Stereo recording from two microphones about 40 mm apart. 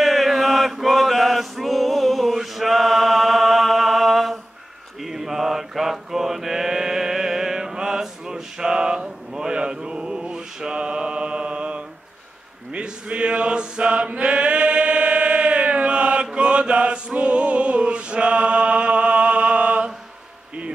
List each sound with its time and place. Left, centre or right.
0.0 s chant: centre
5.0 s mantra: centre; by 11.8 s right
12.7 s chant: right